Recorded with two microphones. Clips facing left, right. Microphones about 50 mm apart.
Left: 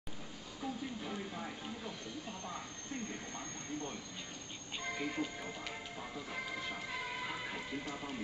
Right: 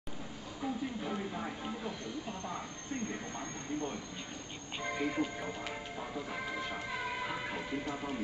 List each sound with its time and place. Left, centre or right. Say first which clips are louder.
0.6 s speech: right 4 dB; centre
3.1 s speech: right 4 dB; centre
5.9 s speech: right 4 dB; centre